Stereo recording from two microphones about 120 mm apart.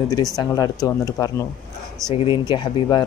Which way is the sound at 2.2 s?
40° left (ahead or behind).